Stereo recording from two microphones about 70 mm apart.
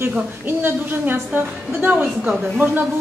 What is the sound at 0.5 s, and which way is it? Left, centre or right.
A man's voice, right.